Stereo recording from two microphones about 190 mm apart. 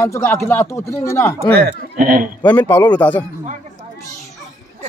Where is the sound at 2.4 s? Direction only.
10° left (ahead or behind).